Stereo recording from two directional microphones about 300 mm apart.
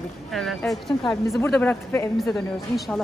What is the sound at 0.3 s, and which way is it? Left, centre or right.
A woman's voice, centre.